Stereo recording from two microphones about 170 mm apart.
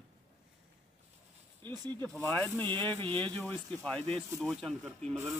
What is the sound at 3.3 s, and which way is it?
Speech, 5° left (ahead or behind).